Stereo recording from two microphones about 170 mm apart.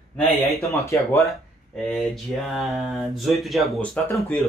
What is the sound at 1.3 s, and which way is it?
A man's voice, centre (ahead or behind).